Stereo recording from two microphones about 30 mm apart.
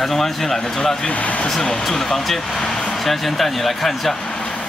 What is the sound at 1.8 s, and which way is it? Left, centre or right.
Speech, centre.